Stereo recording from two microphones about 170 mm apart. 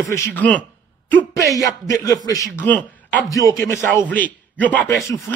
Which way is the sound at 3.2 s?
20° left (ahead or behind).